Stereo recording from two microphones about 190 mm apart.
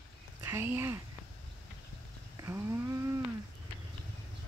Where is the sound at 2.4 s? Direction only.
15° right (ahead or behind).